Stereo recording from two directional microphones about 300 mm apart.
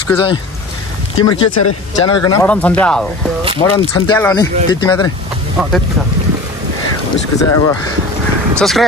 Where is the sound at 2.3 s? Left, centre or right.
Centre.